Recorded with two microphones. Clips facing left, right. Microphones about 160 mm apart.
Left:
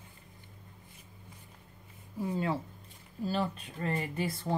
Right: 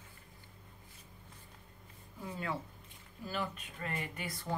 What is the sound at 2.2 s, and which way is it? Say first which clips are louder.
Speech: left 7 dB; 30° left (ahead or behind).